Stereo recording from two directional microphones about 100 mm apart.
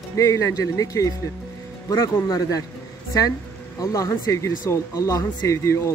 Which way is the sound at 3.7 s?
30° left (ahead or behind).